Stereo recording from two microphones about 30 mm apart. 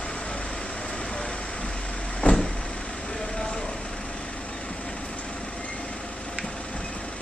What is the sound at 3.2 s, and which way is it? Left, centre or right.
Vehicle, left.